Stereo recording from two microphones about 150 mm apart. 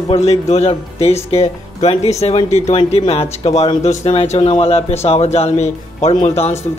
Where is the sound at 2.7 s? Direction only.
40° left (ahead or behind).